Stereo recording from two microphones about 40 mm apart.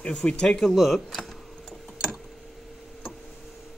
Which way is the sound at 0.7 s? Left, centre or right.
Centre.